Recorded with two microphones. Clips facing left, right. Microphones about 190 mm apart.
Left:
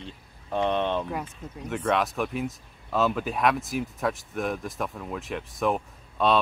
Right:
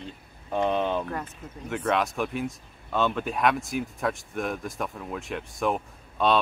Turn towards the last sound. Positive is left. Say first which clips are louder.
# even
turn(degrees=0)  # may be behind; listen again after turning